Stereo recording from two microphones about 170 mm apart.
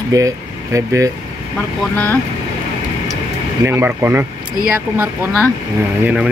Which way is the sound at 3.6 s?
15° right (ahead or behind).